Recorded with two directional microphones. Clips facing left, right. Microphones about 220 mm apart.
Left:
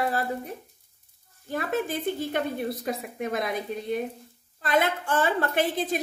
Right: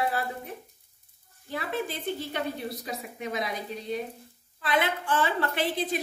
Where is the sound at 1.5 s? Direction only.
50° left (ahead or behind).